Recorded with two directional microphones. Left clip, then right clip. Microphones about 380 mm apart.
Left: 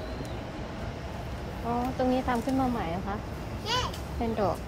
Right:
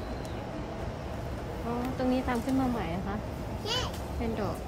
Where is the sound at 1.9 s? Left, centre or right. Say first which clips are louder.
Left 1 dB; centre.